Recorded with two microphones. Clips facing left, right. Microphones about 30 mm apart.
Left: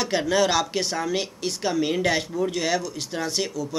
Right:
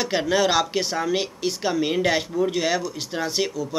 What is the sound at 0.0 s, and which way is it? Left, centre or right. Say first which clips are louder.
Speech: right 1 dB; centre.